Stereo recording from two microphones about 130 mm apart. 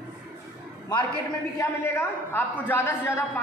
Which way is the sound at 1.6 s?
20° left (ahead or behind).